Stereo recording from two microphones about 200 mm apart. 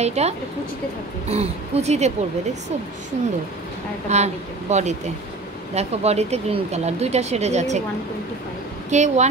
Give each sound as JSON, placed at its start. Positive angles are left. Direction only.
{"t": 0.0, "sound": "speech", "side_deg": -30}
{"t": 1.3, "sound": "speech", "side_deg": -30}
{"t": 4.1, "sound": "speech", "side_deg": -35}
{"t": 8.9, "sound": "speech", "side_deg": -35}